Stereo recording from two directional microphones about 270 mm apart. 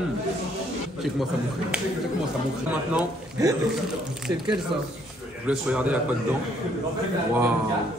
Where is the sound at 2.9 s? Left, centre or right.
Centre.